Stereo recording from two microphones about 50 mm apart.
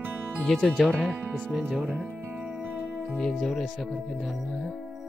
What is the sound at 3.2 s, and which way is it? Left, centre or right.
Speech, centre.